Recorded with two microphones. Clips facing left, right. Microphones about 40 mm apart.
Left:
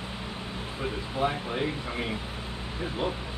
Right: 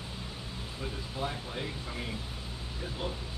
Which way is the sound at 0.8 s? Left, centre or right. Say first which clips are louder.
Left 8 dB; left.